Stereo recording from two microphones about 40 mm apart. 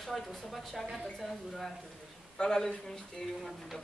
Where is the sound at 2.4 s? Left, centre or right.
Centre.